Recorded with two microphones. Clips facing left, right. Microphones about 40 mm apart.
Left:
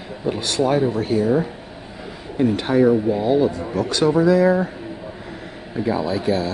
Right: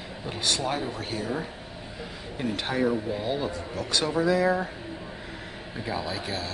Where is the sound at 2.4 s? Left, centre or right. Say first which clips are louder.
Left 10 dB; centre.